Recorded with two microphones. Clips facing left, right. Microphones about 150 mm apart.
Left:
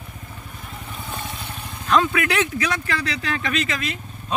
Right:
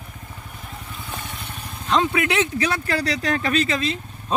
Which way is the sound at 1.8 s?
25° right (ahead or behind).